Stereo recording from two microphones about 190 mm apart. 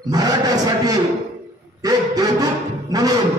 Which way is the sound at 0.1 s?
20° right (ahead or behind).